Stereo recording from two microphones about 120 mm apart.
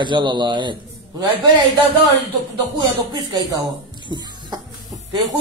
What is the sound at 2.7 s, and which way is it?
Speech, 40° right (ahead or behind).